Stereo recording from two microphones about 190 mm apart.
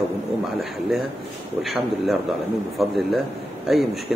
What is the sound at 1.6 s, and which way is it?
Speech, centre (ahead or behind).